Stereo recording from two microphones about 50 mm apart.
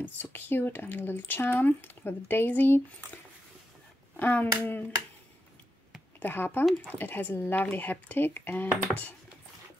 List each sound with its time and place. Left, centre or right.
0.0 s speech: left
4.2 s speech: left
6.1 s speech: left